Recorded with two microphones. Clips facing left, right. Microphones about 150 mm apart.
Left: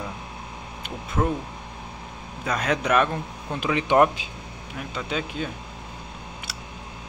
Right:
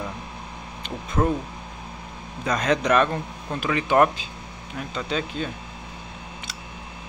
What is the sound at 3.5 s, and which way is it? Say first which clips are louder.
Speech: even; 20° left (ahead or behind).